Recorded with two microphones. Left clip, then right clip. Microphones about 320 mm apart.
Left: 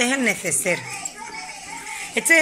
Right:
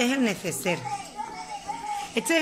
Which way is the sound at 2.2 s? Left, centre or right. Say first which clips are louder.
Left 6 dB; centre.